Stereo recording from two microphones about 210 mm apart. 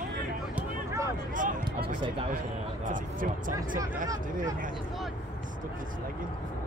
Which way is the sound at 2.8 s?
40° right (ahead or behind).